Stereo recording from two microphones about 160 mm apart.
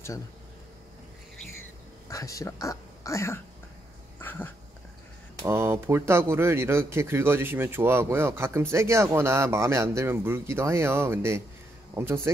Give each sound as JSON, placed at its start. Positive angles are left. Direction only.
{"t": 2.0, "sound": "speech", "side_deg": 20}
{"t": 4.2, "sound": "dog", "side_deg": 15}
{"t": 5.4, "sound": "speech", "side_deg": -15}